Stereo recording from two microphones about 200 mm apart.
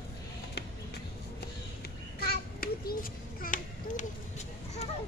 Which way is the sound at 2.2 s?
50° left (ahead or behind).